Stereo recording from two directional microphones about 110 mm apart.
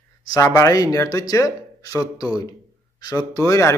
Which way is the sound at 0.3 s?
35° left (ahead or behind).